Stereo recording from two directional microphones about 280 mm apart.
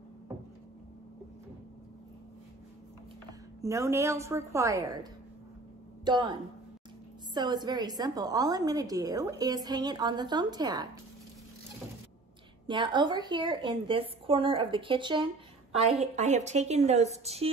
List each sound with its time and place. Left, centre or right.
3.6 s a woman's voice: centre
6.0 s speech: centre
7.3 s a woman's voice: centre
12.6 s a woman's voice: centre